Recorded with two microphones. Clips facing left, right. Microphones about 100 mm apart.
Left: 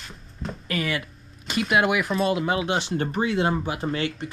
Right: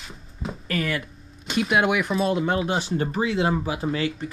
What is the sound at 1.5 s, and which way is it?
Speech, centre (ahead or behind).